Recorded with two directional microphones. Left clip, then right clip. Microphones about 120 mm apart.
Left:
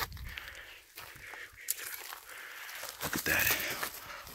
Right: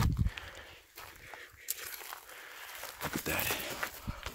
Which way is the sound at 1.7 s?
60° right (ahead or behind).